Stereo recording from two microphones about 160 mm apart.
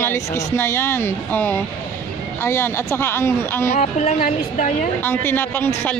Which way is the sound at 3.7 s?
50° left (ahead or behind).